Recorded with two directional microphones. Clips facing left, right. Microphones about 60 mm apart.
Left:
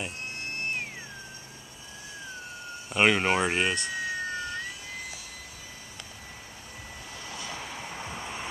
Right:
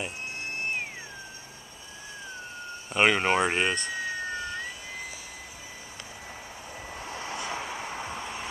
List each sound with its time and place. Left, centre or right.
0.0 s cat: centre
2.9 s speech: centre
3.9 s vehicle: centre
7.0 s vehicle: right
7.6 s vehicle: centre
8.2 s vehicle: centre